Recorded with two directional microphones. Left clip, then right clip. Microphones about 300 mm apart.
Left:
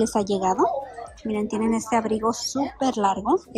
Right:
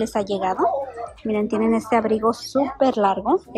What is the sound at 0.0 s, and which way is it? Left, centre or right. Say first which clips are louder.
Speech: even; centre.